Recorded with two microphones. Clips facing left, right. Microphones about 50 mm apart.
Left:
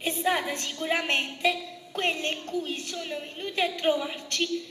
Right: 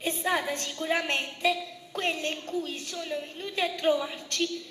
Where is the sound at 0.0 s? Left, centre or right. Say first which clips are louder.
Left 2 dB; left.